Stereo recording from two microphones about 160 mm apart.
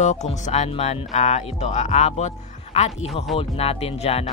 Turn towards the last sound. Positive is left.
turn(degrees=35)  # may be behind; listen again after turning